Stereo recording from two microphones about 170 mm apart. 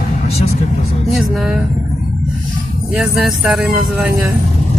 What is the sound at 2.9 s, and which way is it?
Speech, 5° right (ahead or behind).